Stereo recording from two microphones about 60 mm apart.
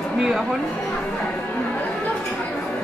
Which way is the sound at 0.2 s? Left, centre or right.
Centre.